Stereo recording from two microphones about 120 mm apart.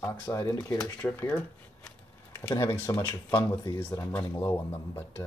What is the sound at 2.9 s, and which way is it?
Speech, 30° left (ahead or behind).